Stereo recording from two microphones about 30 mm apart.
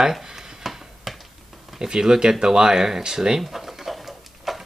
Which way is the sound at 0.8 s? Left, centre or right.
Centre.